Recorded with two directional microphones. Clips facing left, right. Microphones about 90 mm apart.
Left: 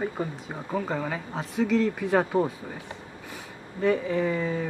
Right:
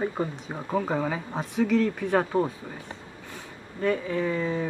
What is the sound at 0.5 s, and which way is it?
Speech, 5° right (ahead or behind).